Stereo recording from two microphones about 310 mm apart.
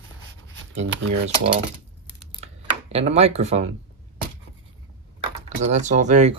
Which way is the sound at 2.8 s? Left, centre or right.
Right.